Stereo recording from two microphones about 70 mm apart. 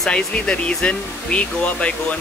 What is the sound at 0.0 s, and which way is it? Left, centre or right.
Speech, centre.